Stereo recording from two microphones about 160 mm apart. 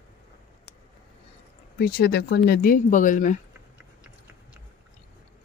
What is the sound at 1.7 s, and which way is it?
Speech, 75° left (ahead or behind).